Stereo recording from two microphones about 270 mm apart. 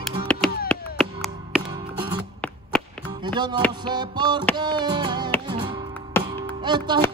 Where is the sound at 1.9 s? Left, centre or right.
Centre.